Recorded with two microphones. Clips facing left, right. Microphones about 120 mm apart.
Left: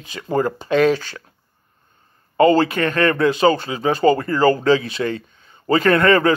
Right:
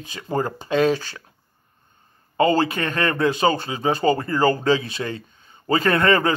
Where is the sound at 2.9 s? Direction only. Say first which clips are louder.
Left 4 dB; 30° right (ahead or behind).